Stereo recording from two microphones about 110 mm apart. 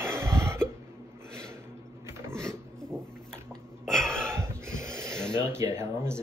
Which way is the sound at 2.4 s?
25° right (ahead or behind).